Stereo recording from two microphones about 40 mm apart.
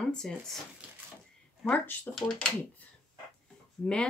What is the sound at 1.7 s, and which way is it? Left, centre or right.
Speech, left.